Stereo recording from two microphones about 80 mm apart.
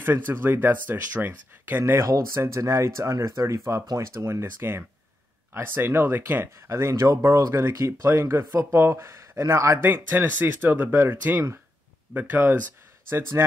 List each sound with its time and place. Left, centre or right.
0.3 s speech: right
9.8 s speech: right